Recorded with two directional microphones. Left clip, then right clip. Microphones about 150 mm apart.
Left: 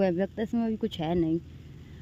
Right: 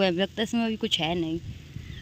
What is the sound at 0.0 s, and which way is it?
Speech, 10° left (ahead or behind).